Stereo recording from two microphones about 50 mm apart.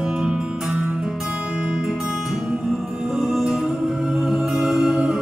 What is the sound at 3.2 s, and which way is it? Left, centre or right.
Music, centre.